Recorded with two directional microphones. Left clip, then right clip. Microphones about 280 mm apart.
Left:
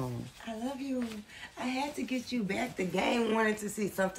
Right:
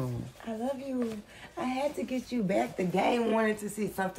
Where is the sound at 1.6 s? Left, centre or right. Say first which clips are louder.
Right 4 dB; right.